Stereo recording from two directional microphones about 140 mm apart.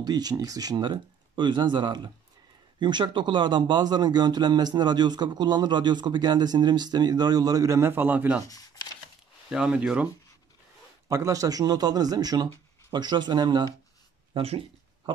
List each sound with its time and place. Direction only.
0.0 s speech: 30° right (ahead or behind)
9.5 s speech: 5° right (ahead or behind)
11.1 s speech: 25° right (ahead or behind)
14.3 s speech: 45° right (ahead or behind)